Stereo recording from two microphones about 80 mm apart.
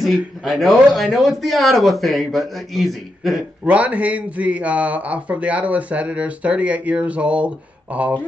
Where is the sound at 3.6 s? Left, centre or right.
Centre.